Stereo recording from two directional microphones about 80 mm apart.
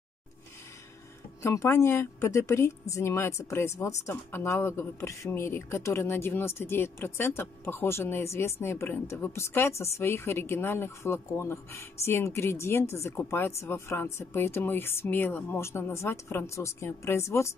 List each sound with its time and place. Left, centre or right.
1.4 s a man's voice: left